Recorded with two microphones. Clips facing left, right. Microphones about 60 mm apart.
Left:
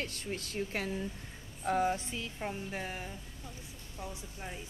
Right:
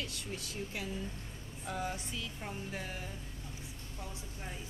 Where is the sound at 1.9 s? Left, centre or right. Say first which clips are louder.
Left 6 dB; left.